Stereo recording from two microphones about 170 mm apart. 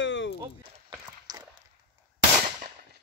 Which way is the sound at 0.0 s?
90° left.